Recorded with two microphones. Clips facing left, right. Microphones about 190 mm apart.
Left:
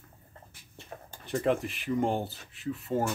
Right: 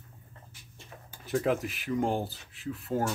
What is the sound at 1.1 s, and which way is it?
Speech, 5° right (ahead or behind).